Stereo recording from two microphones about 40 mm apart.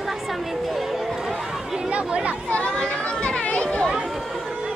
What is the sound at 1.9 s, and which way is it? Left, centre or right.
Chatter, right.